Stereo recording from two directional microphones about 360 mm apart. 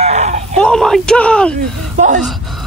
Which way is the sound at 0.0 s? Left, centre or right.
Centre.